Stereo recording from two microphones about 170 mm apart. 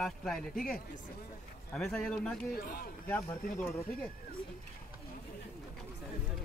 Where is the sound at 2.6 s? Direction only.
60° left (ahead or behind).